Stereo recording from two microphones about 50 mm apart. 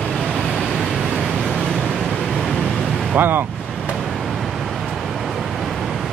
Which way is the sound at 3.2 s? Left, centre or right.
Right.